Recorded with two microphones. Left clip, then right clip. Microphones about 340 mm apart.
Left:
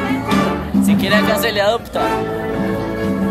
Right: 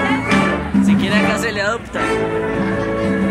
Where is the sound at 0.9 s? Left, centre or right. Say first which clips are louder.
Left 3 dB; left.